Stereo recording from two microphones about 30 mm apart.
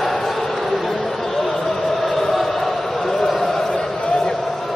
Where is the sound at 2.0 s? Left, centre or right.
Centre.